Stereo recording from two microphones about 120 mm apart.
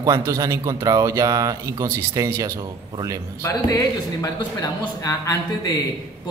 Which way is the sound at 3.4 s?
30° left (ahead or behind).